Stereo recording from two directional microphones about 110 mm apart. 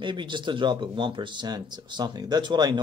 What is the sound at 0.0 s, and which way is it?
Speech, 45° right (ahead or behind).